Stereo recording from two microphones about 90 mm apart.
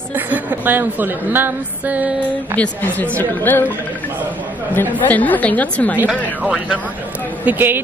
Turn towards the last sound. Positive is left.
turn(degrees=-20)  # may be behind; listen again after turning